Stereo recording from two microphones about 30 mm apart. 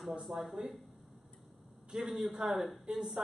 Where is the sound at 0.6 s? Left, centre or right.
Right.